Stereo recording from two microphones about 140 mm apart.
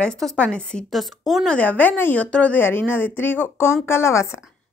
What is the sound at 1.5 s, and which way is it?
A woman's voice, 10° left (ahead or behind).